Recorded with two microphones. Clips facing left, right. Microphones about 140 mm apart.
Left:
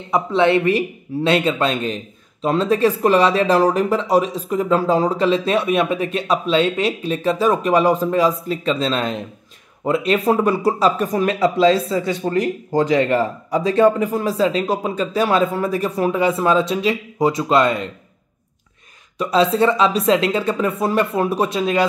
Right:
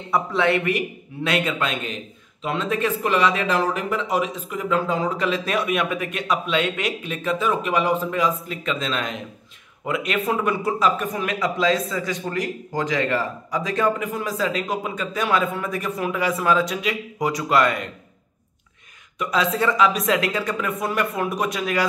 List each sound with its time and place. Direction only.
0.1 s a woman's voice: 25° left (ahead or behind)
19.1 s a woman's voice: 30° left (ahead or behind)